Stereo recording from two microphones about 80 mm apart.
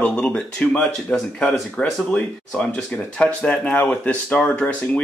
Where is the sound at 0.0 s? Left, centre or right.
Centre.